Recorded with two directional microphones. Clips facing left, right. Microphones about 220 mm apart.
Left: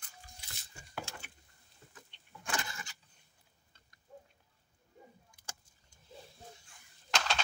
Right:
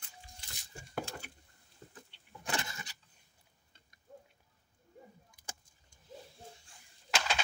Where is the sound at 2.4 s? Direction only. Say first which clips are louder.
Right 1 dB; 20° right (ahead or behind).